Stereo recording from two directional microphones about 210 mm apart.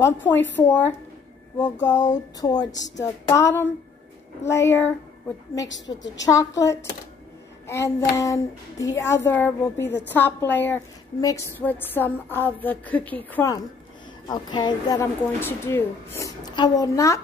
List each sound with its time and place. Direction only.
0.0 s a woman's voice: 10° left (ahead or behind)
4.6 s a woman's voice: 10° left (ahead or behind)
5.9 s a woman's voice: 20° left (ahead or behind)